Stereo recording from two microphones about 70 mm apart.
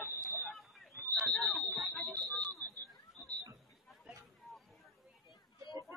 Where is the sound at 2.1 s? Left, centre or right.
Left.